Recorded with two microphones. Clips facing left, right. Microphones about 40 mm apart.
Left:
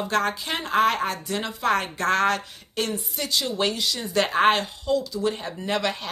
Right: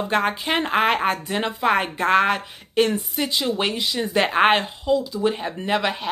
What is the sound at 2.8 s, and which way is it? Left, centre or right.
Speech, right.